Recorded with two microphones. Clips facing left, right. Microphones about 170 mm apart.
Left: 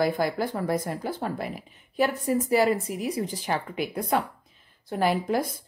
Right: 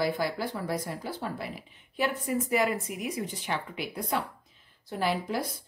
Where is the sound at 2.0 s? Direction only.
35° left (ahead or behind).